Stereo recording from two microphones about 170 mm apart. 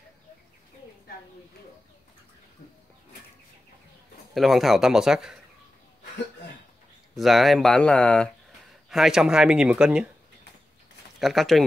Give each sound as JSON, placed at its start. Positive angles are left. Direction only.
{"t": 4.3, "sound": "speech", "side_deg": 0}
{"t": 7.2, "sound": "speech", "side_deg": 0}
{"t": 11.1, "sound": "speech", "side_deg": 0}